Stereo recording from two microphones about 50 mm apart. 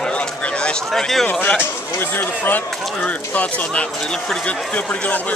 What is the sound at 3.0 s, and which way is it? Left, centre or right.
Speech, left.